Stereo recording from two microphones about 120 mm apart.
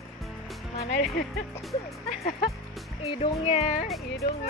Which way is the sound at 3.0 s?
55° left (ahead or behind).